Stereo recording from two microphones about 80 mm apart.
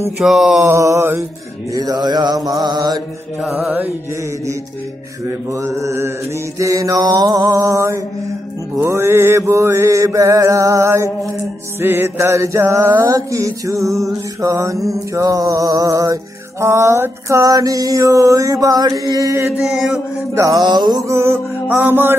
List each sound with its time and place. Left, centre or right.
0.2 s mantra: centre
0.7 s mantra: right
1.7 s mantra: right
3.3 s mantra: centre
5.5 s music: right
8.7 s mantra: right
11.8 s music: right
19.6 s mantra: centre
20.5 s mantra: right
21.0 s music: right